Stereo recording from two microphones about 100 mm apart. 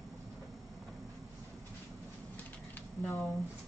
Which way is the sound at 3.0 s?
15° left (ahead or behind).